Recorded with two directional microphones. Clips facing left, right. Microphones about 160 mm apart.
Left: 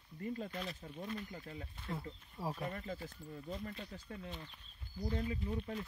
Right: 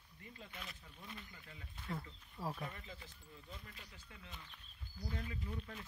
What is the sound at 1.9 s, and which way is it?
Speech, 25° left (ahead or behind).